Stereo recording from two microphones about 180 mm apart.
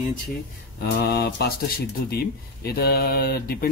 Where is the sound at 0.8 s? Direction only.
65° left (ahead or behind).